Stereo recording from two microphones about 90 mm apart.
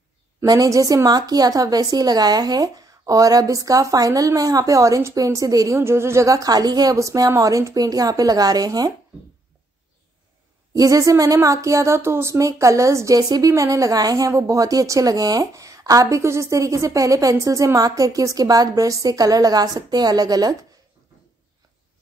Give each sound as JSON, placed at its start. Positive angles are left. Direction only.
{"t": 0.5, "sound": "a woman's voice", "side_deg": -40}
{"t": 10.7, "sound": "a woman's voice", "side_deg": -40}